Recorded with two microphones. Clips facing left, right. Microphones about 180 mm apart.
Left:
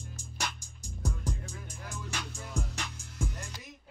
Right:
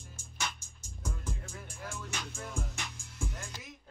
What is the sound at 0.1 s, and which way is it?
Music, 40° left (ahead or behind).